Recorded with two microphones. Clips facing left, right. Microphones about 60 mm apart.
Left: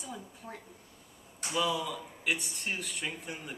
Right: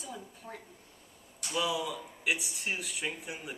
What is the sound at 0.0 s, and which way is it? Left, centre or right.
Speech, centre.